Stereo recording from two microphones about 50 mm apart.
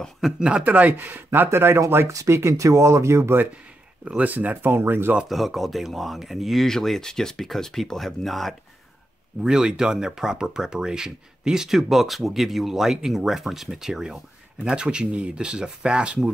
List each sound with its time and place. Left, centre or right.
0.4 s a man's voice: right
1.9 s speech: right
4.2 s speech: right
5.3 s speech: centre
9.4 s speech: centre